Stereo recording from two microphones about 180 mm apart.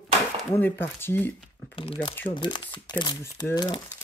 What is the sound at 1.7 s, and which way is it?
Speech, 30° left (ahead or behind).